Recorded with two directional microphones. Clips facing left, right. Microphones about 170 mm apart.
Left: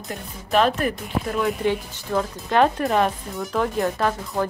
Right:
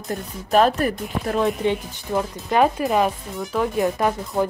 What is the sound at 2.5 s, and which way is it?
Speech, 5° right (ahead or behind).